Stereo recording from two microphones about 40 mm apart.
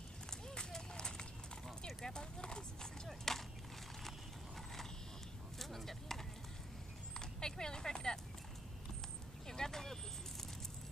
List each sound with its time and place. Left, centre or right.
0.3 s run: centre
1.9 s horse: centre
3.1 s horse: centre
5.6 s chopping: centre
7.2 s a sound: centre
9.5 s a sound: centre